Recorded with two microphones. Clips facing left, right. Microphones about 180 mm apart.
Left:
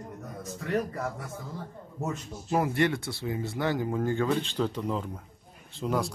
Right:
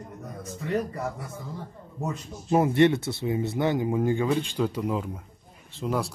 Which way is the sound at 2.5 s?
25° right (ahead or behind).